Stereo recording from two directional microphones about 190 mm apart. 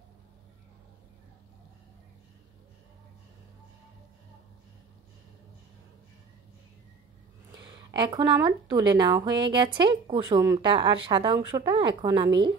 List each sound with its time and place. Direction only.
7.9 s a woman's voice: 25° right (ahead or behind)